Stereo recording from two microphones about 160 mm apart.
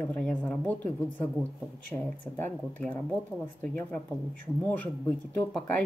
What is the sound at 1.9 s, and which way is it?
A woman's voice, 15° left (ahead or behind).